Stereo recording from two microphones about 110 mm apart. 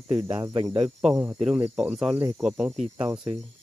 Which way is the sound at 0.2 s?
40° right (ahead or behind).